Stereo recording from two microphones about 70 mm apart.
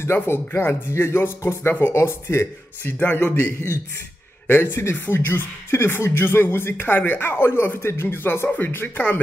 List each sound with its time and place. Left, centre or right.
0.0 s a man's voice: left